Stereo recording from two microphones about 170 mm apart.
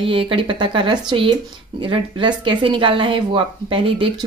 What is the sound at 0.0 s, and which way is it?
Speech, 30° right (ahead or behind).